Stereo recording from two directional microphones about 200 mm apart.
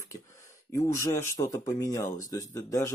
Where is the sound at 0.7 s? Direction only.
15° left (ahead or behind).